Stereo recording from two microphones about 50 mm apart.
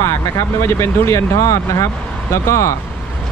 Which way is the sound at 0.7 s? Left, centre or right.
Left.